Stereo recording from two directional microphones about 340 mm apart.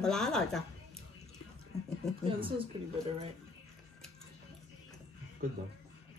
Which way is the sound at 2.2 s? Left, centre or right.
Centre.